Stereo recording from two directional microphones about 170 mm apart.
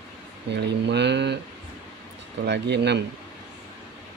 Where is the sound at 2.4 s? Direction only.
90° right.